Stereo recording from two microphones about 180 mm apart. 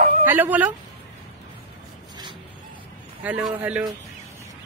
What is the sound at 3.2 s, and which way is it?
Speech, 5° right (ahead or behind).